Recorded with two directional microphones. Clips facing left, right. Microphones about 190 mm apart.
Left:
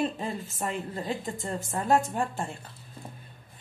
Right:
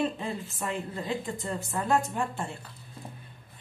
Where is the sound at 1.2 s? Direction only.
40° left (ahead or behind).